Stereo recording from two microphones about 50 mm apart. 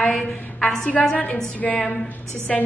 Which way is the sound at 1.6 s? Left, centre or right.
Left.